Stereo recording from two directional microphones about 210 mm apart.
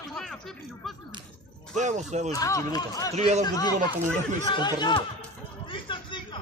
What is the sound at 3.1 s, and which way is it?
Speech, 35° right (ahead or behind).